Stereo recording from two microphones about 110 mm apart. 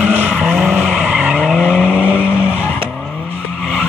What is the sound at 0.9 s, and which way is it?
Vehicle, 10° right (ahead or behind).